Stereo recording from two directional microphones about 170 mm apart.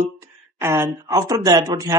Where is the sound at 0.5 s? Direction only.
15° right (ahead or behind).